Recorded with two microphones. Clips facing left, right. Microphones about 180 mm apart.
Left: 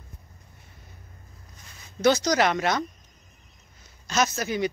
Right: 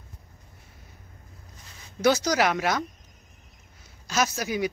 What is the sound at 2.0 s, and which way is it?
Speech, 10° right (ahead or behind).